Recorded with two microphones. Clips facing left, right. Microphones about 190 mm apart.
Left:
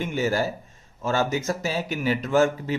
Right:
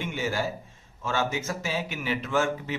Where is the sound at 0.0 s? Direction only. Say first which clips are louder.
Left 5 dB; 40° left (ahead or behind).